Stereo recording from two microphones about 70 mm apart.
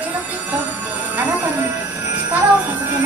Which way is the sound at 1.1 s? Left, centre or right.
Right.